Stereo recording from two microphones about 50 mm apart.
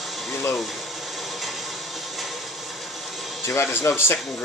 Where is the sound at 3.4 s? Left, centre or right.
Left.